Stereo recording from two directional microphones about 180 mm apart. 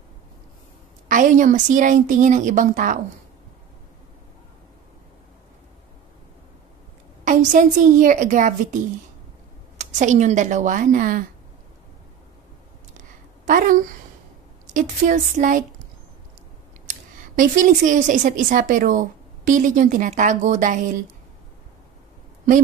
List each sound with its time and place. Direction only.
1.0 s a woman's voice: 45° right (ahead or behind)
7.2 s a woman's voice: 45° right (ahead or behind)
13.5 s a woman's voice: 45° right (ahead or behind)
16.8 s speech: 45° right (ahead or behind)